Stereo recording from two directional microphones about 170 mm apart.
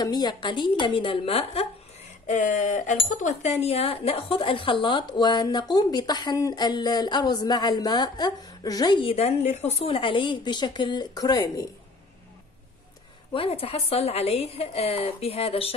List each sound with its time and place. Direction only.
0.0 s a woman's voice: 25° left (ahead or behind)
2.2 s a sound: 45° left (ahead or behind)
3.1 s a woman's voice: 45° left (ahead or behind); by 11.6 s 20° left (ahead or behind)
13.3 s a woman's voice: 35° left (ahead or behind)